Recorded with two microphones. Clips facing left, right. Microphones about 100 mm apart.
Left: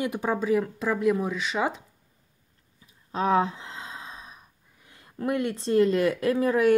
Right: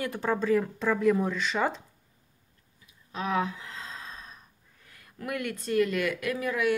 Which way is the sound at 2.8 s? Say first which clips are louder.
Left 7 dB; 35° left (ahead or behind).